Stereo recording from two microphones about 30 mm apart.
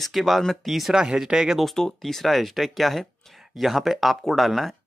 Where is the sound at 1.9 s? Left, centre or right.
Centre.